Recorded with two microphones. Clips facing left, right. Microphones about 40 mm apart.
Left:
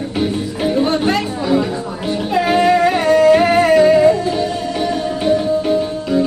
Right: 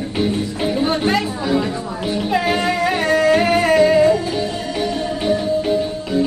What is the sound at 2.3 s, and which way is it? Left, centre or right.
Music, centre.